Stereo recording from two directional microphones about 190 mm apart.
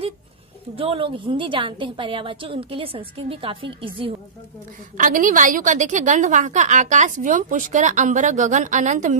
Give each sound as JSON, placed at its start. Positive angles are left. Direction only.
{"t": 0.7, "sound": "a woman's voice", "side_deg": -30}
{"t": 4.9, "sound": "a woman's voice", "side_deg": -45}